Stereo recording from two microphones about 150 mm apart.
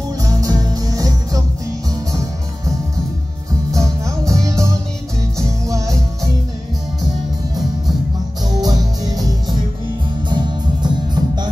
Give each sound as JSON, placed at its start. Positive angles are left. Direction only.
{"t": 0.2, "sound": "music", "side_deg": -20}
{"t": 3.7, "sound": "music", "side_deg": -20}
{"t": 8.5, "sound": "music", "side_deg": -25}